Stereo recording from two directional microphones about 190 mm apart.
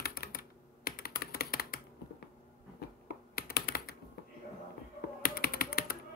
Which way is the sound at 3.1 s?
55° left (ahead or behind).